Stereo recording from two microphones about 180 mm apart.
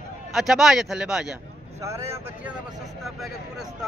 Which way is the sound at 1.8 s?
15° right (ahead or behind).